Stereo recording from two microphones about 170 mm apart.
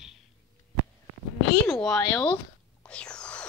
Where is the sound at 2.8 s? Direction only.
5° left (ahead or behind).